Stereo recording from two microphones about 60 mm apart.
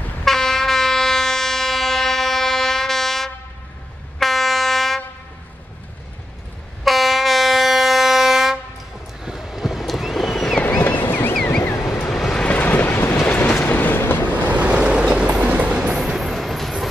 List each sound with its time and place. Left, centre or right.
0.2 s train: centre
6.8 s train: centre
9.2 s vehicle: centre
10.8 s a sound: left
11.6 s vehicle: left
12.1 s vehicle: centre
12.4 s vehicle: left
13.7 s train: left
14.3 s vehicle: right
15.4 s train: right
16.0 s vehicle: centre